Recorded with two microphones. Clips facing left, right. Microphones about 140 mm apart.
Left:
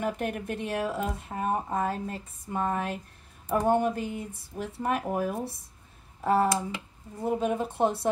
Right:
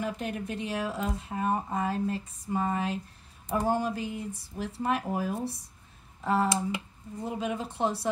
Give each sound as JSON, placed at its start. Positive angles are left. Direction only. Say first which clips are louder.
{"t": 0.0, "sound": "speech", "louder": "left 2 dB", "side_deg": 55}